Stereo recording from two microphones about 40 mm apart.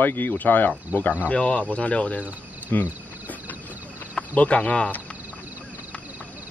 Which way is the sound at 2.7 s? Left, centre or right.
Left.